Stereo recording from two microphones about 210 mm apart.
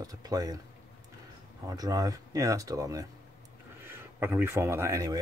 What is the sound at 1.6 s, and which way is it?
Speech, 15° right (ahead or behind).